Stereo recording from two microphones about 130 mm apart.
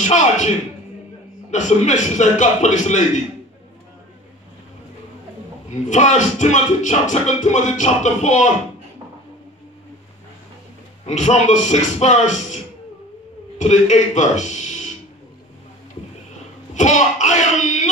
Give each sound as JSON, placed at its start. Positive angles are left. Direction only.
{"t": 0.0, "sound": "music", "side_deg": 65}
{"t": 1.5, "sound": "music", "side_deg": 65}
{"t": 5.9, "sound": "music", "side_deg": 65}
{"t": 11.1, "sound": "speech", "side_deg": 65}
{"t": 16.7, "sound": "music", "side_deg": 70}